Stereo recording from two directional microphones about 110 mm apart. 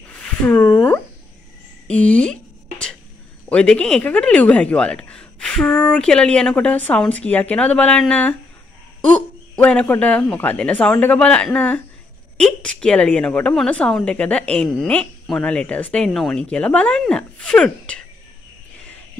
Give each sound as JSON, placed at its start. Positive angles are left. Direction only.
{"t": 0.2, "sound": "a sound", "side_deg": 10}
{"t": 0.7, "sound": "speech", "side_deg": 20}
{"t": 1.9, "sound": "speech", "side_deg": 10}
{"t": 3.4, "sound": "speech", "side_deg": 10}